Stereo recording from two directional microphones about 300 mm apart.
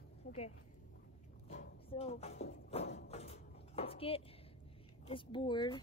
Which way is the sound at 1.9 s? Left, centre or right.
Centre.